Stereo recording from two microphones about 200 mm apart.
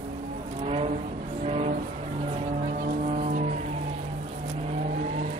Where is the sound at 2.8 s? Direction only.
45° right (ahead or behind).